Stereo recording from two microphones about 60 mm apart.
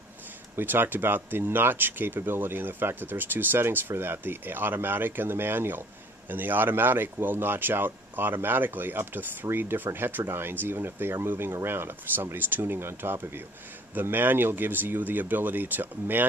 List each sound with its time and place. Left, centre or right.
0.6 s speech: right